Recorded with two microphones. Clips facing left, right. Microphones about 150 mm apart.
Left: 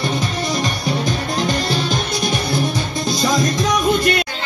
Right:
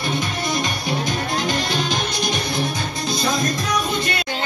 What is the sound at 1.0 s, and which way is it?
Music, 45° left (ahead or behind).